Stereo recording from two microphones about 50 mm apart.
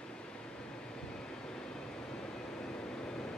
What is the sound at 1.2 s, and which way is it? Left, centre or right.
Vehicle, centre.